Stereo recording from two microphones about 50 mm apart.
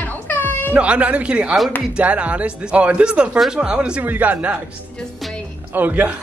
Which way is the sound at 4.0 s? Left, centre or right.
Right.